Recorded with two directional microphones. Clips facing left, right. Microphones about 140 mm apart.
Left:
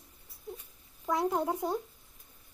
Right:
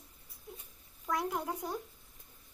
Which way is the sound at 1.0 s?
30° left (ahead or behind).